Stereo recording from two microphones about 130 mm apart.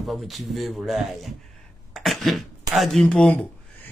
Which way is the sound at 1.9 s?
Centre (ahead or behind).